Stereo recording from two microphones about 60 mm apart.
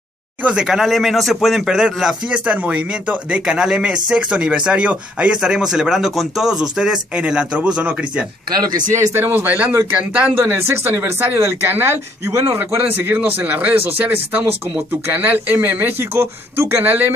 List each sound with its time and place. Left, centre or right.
0.4 s speech: right
0.7 s speech: centre
2.4 s speech: right
5.4 s speech: centre
9.1 s speech: right
10.4 s speech: right